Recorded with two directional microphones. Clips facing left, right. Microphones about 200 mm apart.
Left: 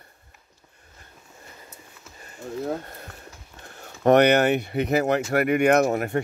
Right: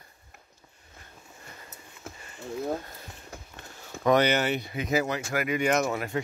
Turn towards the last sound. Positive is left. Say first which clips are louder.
# left 6 dB
turn(degrees=50)  # may be behind; listen again after turning